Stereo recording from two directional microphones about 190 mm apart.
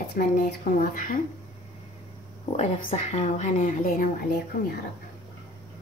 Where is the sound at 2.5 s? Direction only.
35° left (ahead or behind); by 4.7 s 50° left (ahead or behind).